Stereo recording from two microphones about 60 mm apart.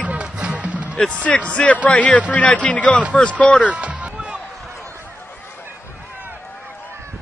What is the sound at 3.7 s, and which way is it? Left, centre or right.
Music, right.